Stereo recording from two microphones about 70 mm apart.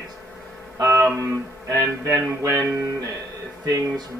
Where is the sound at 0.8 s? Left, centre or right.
Right.